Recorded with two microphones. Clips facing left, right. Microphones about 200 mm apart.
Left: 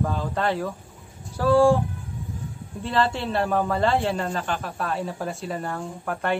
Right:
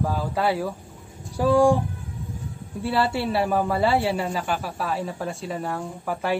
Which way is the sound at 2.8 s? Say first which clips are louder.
Right 1 dB; 10° right (ahead or behind).